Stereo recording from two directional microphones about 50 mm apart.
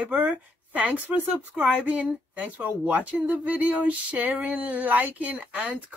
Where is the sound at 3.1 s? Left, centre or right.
Right.